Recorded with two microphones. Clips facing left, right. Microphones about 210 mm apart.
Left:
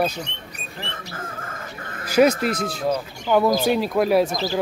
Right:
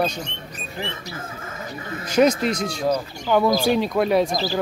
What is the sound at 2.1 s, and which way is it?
Speech, 5° left (ahead or behind).